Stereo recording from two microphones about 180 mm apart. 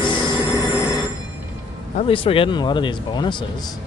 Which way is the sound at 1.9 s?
30° left (ahead or behind).